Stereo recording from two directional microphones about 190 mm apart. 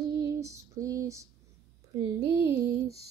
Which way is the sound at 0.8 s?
15° right (ahead or behind).